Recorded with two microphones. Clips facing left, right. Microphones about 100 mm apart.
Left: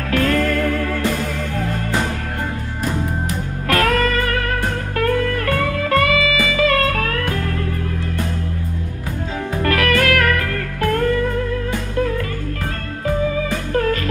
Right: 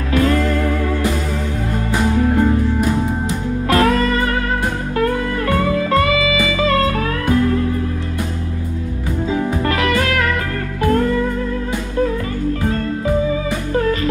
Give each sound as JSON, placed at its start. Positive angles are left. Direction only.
{"t": 0.1, "sound": "music", "side_deg": -20}
{"t": 3.3, "sound": "music", "side_deg": -25}
{"t": 9.7, "sound": "music", "side_deg": -25}
{"t": 12.6, "sound": "music", "side_deg": -20}